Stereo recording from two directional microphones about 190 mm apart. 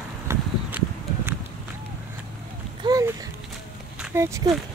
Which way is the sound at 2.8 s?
20° right (ahead or behind).